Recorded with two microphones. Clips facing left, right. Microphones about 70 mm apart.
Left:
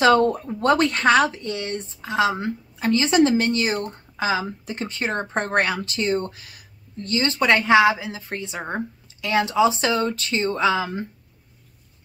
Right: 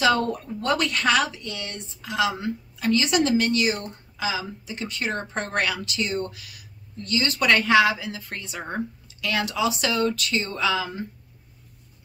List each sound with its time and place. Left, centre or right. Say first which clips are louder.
0.0 s a woman's voice: left 5 dB; left